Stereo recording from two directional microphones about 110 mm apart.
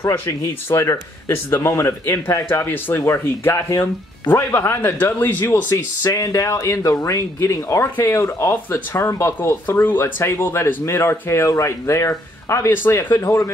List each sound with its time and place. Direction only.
0.0 s speech: 25° left (ahead or behind)